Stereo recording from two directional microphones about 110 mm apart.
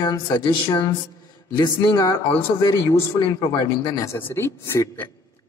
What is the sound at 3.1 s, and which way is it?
Speech, 45° left (ahead or behind).